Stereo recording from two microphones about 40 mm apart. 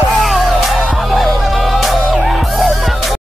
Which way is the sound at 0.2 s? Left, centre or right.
Centre.